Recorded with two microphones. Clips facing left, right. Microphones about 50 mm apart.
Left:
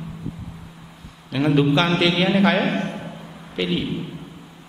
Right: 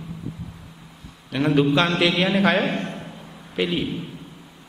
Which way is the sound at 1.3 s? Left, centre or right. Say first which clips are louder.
Left 1 dB; centre.